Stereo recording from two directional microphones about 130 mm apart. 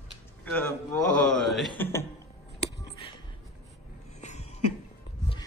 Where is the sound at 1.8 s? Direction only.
20° left (ahead or behind).